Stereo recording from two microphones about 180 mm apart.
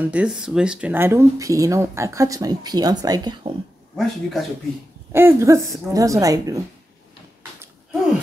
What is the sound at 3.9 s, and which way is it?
Speech, 5° left (ahead or behind).